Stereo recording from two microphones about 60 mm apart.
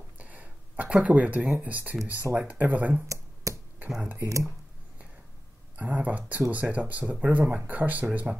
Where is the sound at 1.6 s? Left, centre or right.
Right.